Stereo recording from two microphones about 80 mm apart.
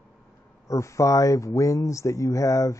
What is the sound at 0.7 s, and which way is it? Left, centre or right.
Speech, left.